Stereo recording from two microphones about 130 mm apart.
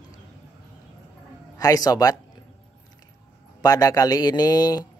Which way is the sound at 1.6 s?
30° left (ahead or behind).